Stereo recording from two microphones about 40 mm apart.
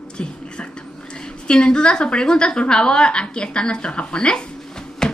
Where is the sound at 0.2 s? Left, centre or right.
Left.